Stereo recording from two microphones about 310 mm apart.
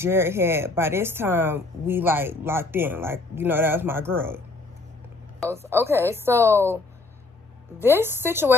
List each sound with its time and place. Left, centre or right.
0.0 s speech: centre
5.5 s speech: centre
7.8 s speech: centre